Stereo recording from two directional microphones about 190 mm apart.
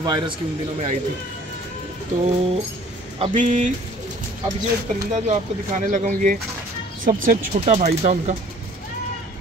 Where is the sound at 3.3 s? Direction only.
40° right (ahead or behind).